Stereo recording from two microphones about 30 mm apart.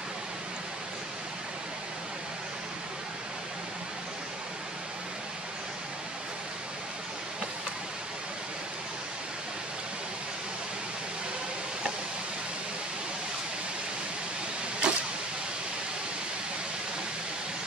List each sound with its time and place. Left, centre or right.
14.8 s vehicle: right